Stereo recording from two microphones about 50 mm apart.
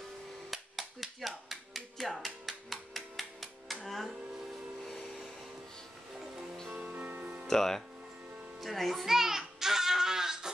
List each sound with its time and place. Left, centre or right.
0.5 s music: centre
6.8 s music: right
7.4 s speech: centre
8.5 s music: centre